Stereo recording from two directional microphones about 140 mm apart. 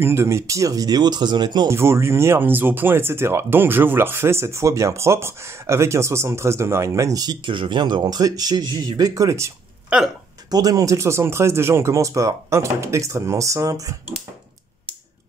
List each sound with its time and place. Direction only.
0.0 s speech: 20° right (ahead or behind)
1.7 s speech: 20° right (ahead or behind)
10.5 s speech: 25° right (ahead or behind)